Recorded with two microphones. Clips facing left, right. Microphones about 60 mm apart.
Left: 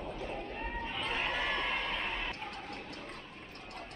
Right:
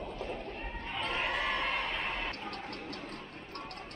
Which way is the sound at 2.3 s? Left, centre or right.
Right.